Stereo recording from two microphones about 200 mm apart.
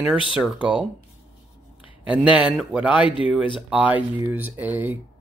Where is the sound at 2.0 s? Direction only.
5° right (ahead or behind).